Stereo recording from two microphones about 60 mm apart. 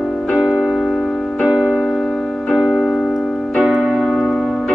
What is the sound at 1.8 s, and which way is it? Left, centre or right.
Music, centre.